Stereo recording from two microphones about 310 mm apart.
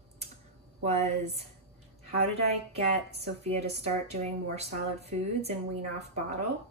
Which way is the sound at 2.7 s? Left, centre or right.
Centre.